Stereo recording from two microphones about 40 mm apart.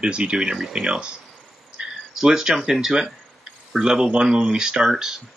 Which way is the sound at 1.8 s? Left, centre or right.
Right.